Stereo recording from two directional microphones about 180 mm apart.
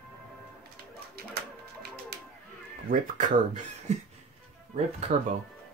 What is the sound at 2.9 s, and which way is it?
Speech, 45° right (ahead or behind).